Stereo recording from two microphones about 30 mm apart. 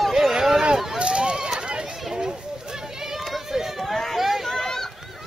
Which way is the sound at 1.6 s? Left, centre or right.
Right.